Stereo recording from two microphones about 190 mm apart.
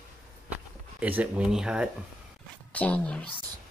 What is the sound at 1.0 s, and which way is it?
Speech, 10° right (ahead or behind).